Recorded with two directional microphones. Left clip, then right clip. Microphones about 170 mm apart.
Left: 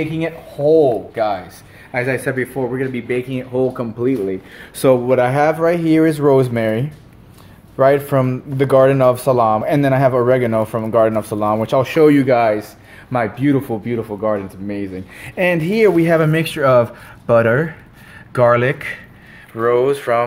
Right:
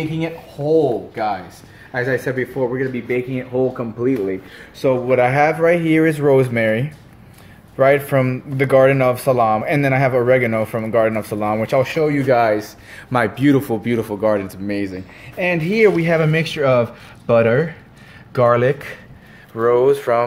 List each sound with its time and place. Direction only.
0.0 s speech: 35° left (ahead or behind)
1.1 s speech: 45° left (ahead or behind)
1.9 s speech: 30° left (ahead or behind)
2.1 s speech: 20° left (ahead or behind)
2.9 s a man's voice: 10° left (ahead or behind)
15.5 s a man's voice: 20° left (ahead or behind); by 20.2 s centre (ahead or behind)